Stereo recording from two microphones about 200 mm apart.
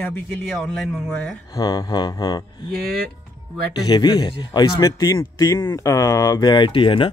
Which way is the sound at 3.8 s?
20° left (ahead or behind).